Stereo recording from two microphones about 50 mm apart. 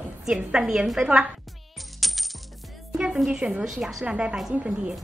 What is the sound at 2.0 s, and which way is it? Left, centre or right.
Coin, centre.